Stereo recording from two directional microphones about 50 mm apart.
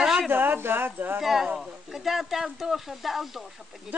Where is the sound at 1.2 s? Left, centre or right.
Centre.